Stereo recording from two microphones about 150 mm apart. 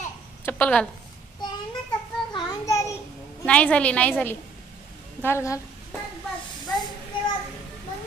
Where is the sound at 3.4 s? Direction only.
10° left (ahead or behind).